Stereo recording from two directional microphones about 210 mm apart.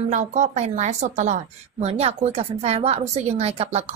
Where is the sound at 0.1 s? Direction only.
35° right (ahead or behind).